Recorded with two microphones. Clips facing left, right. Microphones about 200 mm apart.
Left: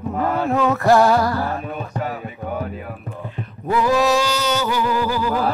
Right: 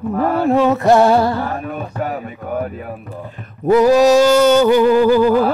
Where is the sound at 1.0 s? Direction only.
25° right (ahead or behind).